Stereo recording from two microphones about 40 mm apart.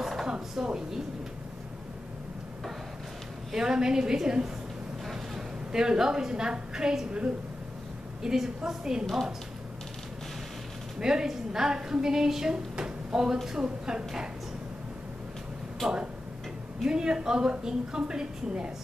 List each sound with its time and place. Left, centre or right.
0.0 s a sound: centre
0.3 s a woman's voice: centre
3.5 s a woman's voice: centre
5.7 s a woman's voice: centre
7.1 s a woman's voice: right
8.2 s a woman's voice: centre
11.0 s a woman's voice: centre
16.8 s a woman's voice: centre